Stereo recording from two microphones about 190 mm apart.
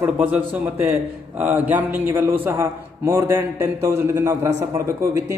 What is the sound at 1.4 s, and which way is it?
A man's voice, 10° right (ahead or behind).